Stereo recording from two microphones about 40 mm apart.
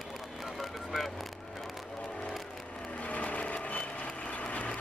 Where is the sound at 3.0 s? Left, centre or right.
Left.